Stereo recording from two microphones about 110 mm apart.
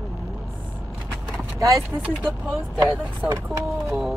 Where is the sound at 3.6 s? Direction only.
Centre (ahead or behind).